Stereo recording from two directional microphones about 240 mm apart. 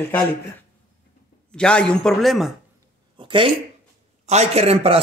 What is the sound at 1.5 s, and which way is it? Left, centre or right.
Speech, centre.